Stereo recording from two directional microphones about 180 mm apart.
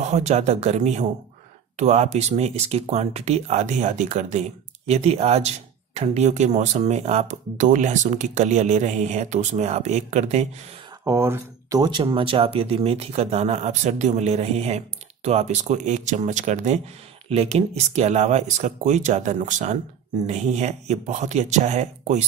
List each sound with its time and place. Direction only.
0.0 s speech: 40° right (ahead or behind)
11.1 s speech: 15° right (ahead or behind); by 22.2 s 40° right (ahead or behind)